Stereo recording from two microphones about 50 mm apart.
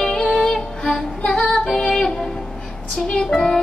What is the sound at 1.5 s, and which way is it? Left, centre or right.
Female singing, centre.